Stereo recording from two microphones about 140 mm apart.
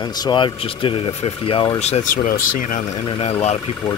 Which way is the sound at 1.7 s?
50° left (ahead or behind).